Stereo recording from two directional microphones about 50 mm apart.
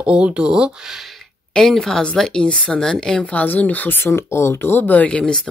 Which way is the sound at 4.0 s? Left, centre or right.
Left.